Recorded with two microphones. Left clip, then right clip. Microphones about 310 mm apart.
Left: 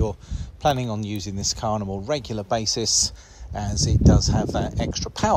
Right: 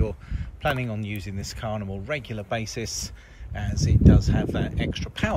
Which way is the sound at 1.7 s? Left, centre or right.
Left.